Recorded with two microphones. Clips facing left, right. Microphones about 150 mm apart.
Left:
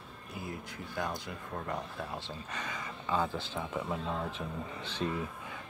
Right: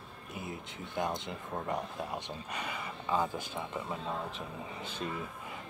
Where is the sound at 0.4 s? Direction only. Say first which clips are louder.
Left 1 dB; 20° right (ahead or behind); by 5.0 s 5° right (ahead or behind).